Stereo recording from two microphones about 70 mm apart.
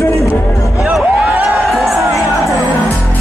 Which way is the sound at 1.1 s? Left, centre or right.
Centre.